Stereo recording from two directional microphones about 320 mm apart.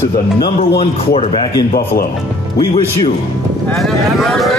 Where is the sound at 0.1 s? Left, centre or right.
Left.